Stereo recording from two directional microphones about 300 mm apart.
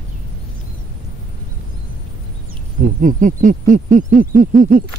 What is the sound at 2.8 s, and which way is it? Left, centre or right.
Owl, right.